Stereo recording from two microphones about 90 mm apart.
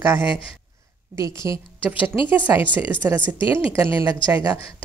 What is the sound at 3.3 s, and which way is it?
Speech, 75° left (ahead or behind).